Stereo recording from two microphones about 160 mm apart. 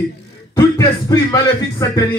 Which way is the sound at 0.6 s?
20° left (ahead or behind).